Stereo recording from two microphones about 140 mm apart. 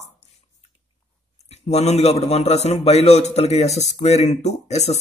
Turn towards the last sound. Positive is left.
turn(degrees=50)  # may be behind; listen again after turning